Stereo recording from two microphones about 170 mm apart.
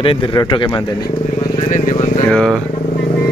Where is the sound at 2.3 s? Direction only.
5° left (ahead or behind).